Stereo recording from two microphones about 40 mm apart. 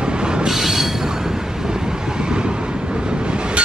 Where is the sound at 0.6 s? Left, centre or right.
Centre.